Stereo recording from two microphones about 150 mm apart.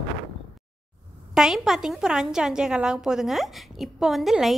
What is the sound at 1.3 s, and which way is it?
A woman's voice, 5° right (ahead or behind).